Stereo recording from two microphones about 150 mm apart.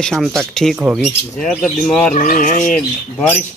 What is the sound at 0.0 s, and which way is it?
Speech, 5° left (ahead or behind).